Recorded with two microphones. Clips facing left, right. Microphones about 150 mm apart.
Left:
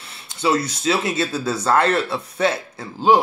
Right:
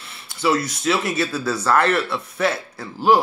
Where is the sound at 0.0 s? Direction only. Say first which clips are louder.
Even; 25° left (ahead or behind).